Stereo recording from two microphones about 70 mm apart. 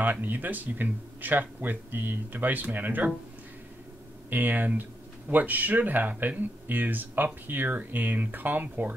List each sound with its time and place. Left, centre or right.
0.0 s speech: right
4.3 s speech: right